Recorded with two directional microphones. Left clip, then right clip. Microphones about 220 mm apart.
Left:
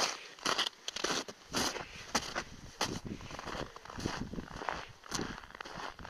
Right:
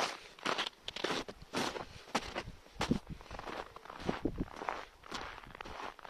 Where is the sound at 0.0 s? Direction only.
50° left (ahead or behind).